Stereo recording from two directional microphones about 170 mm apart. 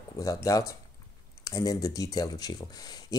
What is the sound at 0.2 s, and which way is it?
Speech, 20° left (ahead or behind).